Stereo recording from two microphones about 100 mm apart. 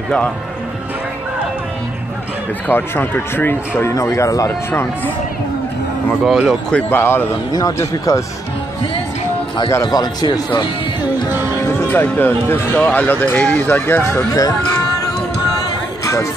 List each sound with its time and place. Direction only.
2.7 s speech: 20° left (ahead or behind)
3.9 s speech: 30° left (ahead or behind)
6.2 s speech: 5° right (ahead or behind)
6.7 s speech: 15° left (ahead or behind)
7.5 s speech: 35° left (ahead or behind)
9.8 s speech: 40° left (ahead or behind)
11.2 s music: 20° right (ahead or behind)
11.6 s speech: 20° left (ahead or behind)